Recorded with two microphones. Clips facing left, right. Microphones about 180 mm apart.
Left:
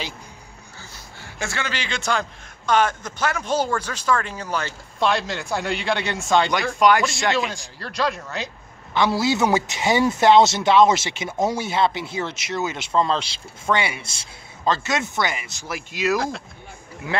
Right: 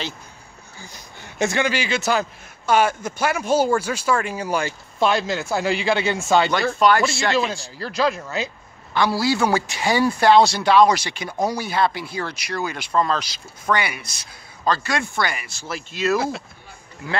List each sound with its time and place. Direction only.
0.7 s a man's voice: 20° right (ahead or behind)
6.5 s speech: 15° left (ahead or behind)
7.8 s speech: centre (ahead or behind)
8.9 s speech: 20° left (ahead or behind)
16.2 s speech: 5° right (ahead or behind)
17.1 s speech: 20° left (ahead or behind)